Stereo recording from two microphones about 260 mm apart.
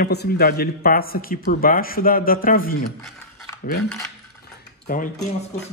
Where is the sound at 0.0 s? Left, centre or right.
Left.